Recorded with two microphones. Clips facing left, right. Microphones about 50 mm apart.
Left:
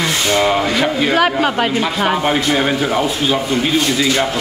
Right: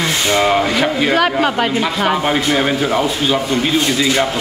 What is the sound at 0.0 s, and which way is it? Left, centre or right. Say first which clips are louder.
Rub: even; centre.